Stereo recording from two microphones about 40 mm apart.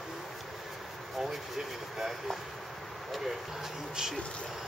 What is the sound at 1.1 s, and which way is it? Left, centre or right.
Speech, centre.